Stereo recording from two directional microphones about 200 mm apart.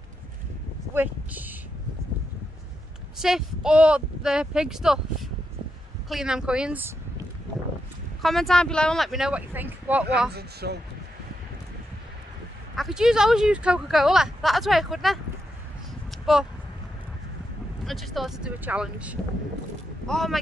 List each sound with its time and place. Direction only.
0.9 s speech: 10° right (ahead or behind)
3.2 s speech: centre (ahead or behind)
8.2 s speech: centre (ahead or behind)
10.3 s speech: 55° right (ahead or behind)
12.7 s speech: centre (ahead or behind)
16.1 s a sound: centre (ahead or behind)
17.8 s speech: centre (ahead or behind)